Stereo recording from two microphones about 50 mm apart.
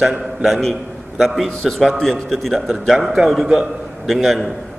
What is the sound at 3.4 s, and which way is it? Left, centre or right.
Speech, centre.